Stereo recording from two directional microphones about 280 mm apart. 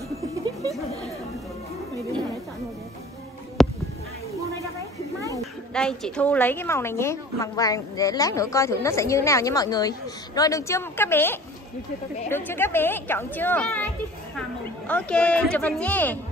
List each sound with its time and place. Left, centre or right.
3.6 s a sound: centre
5.3 s a woman's voice: centre
14.9 s speech: centre